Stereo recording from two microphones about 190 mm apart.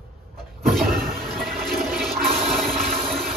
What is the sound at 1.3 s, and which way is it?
Toilet flush, centre (ahead or behind).